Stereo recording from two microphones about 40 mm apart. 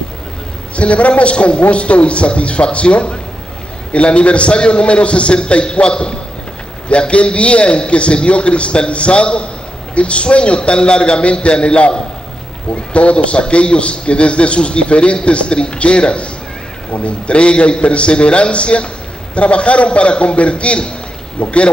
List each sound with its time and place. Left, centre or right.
0.7 s a man's voice: left